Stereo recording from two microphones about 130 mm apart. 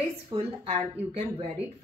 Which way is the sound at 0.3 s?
50° right (ahead or behind).